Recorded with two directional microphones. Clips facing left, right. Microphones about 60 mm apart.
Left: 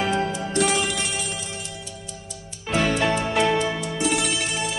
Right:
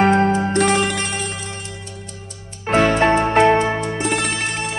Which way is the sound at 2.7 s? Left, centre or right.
Right.